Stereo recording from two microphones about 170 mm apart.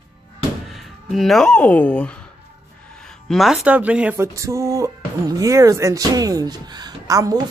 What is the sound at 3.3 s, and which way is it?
Speech, centre (ahead or behind).